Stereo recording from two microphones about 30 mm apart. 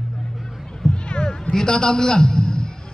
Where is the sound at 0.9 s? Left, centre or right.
Left.